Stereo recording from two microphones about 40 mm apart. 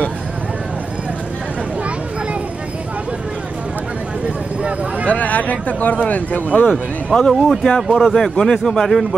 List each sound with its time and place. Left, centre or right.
5.0 s speech: left
7.1 s speech: centre
7.6 s speech: centre